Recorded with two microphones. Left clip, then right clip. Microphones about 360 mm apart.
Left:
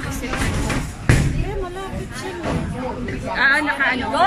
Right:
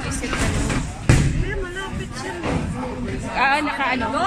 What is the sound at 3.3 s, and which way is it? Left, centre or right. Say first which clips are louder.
Speech: left 2 dB; centre.